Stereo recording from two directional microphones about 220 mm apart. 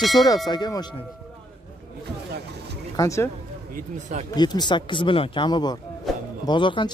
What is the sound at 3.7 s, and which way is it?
Speech, 30° right (ahead or behind).